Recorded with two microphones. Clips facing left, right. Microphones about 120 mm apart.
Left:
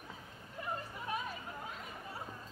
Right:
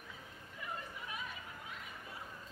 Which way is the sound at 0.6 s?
40° left (ahead or behind).